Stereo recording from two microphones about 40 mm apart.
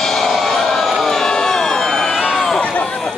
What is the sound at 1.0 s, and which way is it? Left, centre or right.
Crowd, centre.